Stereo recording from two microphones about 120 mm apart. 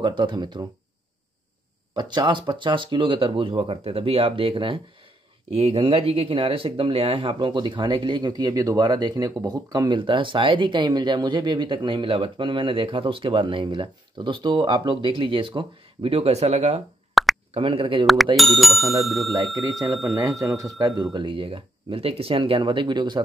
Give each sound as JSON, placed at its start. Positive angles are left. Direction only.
{"t": 0.0, "sound": "speech", "side_deg": -40}
{"t": 2.0, "sound": "speech", "side_deg": -40}
{"t": 17.1, "sound": "plop", "side_deg": 0}
{"t": 17.6, "sound": "speech", "side_deg": -45}
{"t": 18.0, "sound": "speech", "side_deg": 0}
{"t": 20.2, "sound": "speech", "side_deg": -25}